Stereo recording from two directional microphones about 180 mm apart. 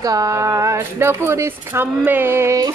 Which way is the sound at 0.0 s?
20° right (ahead or behind).